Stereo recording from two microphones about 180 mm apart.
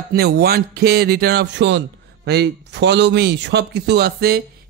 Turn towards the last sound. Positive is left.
turn(degrees=-60)  # may be behind; listen again after turning